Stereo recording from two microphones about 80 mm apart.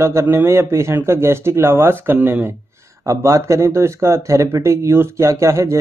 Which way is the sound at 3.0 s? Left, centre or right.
Right.